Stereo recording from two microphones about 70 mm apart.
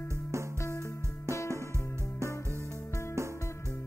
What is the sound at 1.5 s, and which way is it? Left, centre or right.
Music, right.